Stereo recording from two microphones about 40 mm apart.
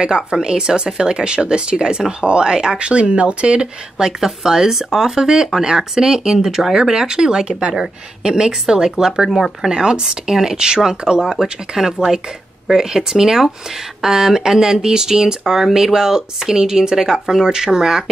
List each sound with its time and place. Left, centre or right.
0.0 s speech: right
4.2 s speech: centre
9.7 s speech: centre